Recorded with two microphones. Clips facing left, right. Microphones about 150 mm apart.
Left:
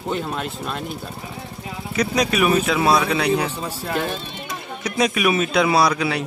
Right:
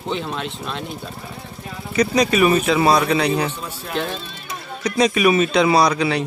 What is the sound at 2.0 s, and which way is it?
Speech, centre (ahead or behind).